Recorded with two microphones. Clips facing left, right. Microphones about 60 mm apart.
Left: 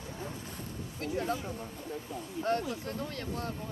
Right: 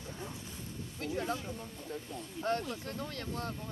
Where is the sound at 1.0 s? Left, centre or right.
Left.